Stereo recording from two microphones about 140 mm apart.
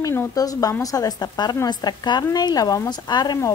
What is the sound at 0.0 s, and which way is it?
A woman's voice, 20° left (ahead or behind).